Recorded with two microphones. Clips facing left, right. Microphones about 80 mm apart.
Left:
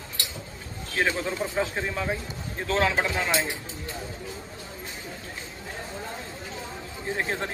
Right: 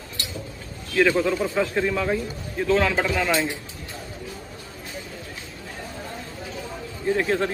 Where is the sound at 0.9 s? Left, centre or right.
Left.